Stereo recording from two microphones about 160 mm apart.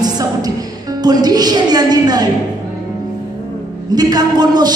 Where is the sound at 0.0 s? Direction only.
25° right (ahead or behind).